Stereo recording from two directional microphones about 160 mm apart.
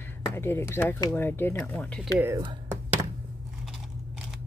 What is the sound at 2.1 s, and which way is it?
Speech, 15° right (ahead or behind).